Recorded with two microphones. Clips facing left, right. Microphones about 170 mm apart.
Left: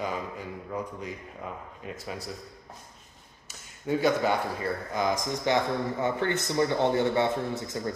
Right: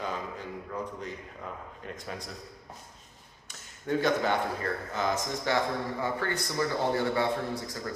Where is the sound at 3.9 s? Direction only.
10° left (ahead or behind).